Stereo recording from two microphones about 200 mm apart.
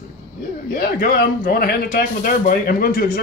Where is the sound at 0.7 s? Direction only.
45° left (ahead or behind).